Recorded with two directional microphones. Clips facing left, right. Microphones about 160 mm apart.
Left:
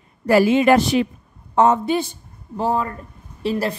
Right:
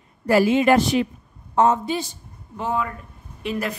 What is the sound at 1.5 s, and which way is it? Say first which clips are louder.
Speech: left 3 dB; 70° left (ahead or behind).